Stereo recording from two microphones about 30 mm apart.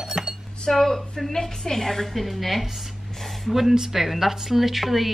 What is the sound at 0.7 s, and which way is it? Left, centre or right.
A woman's voice, centre.